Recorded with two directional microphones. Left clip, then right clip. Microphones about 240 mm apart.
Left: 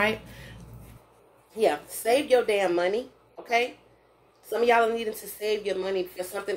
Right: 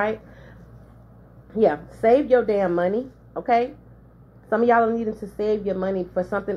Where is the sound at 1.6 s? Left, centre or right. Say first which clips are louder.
Right 5 dB; left.